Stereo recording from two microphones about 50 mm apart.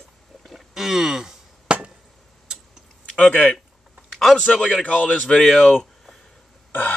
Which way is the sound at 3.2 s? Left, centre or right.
Left.